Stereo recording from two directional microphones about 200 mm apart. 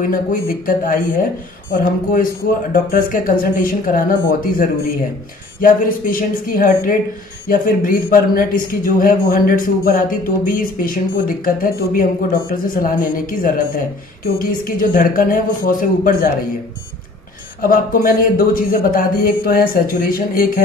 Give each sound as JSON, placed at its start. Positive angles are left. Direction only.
{"t": 0.0, "sound": "a man's voice", "side_deg": 45}
{"t": 17.6, "sound": "a man's voice", "side_deg": 45}